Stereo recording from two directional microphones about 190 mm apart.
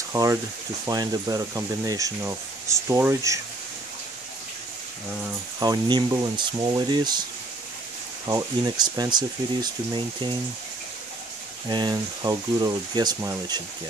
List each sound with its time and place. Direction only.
0.1 s speech: 15° right (ahead or behind)
5.6 s speech: 20° right (ahead or behind)
8.3 s speech: 20° right (ahead or behind)
11.7 s speech: 20° right (ahead or behind)